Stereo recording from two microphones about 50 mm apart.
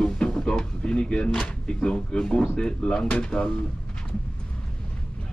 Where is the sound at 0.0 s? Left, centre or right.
Centre.